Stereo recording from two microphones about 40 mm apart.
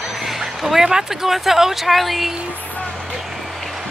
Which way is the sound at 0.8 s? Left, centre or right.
Centre.